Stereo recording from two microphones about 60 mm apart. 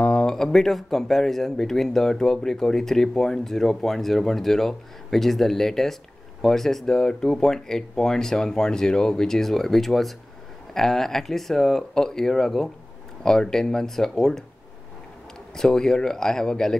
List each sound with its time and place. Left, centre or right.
0.0 s speech: centre
15.5 s speech: centre